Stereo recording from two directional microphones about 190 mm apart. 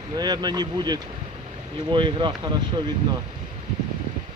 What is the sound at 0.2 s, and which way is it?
Speech, 20° right (ahead or behind).